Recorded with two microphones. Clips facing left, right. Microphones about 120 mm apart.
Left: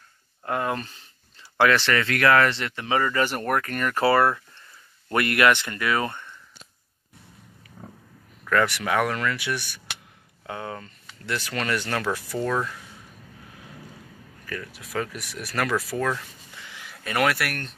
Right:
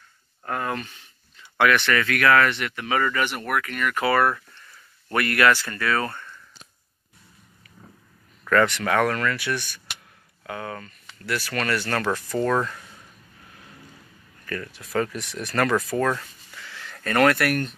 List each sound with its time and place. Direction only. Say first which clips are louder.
0.5 s a sound: left 2 dB; 20° left (ahead or behind)
0.7 s speech: right 1 dB; 35° left (ahead or behind)
3.3 s speech: left 2 dB; 40° left (ahead or behind); by 6.3 s 20° left (ahead or behind)
8.5 s speech: right 2 dB; 10° left (ahead or behind)
14.4 s speech: right 3 dB; 5° left (ahead or behind)
16.5 s a sound: right 3 dB; 15° left (ahead or behind); by 17.7 s centre (ahead or behind)